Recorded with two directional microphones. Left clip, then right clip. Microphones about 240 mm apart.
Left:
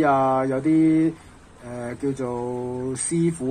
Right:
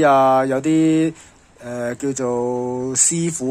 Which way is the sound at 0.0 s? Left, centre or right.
Right.